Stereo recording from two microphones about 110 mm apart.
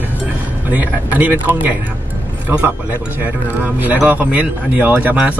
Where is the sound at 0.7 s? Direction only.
15° right (ahead or behind).